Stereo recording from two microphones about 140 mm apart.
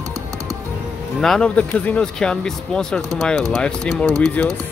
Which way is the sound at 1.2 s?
5° left (ahead or behind).